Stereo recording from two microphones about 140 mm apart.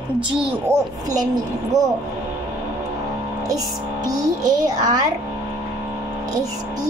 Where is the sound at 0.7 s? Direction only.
20° right (ahead or behind).